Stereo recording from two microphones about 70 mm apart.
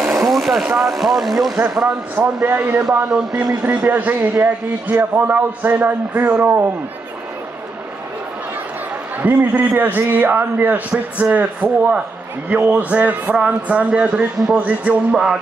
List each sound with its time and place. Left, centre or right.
0.1 s speech: centre
2.1 s a man's voice: right
3.1 s speech: centre
3.6 s a man's voice: right
9.2 s a man's voice: right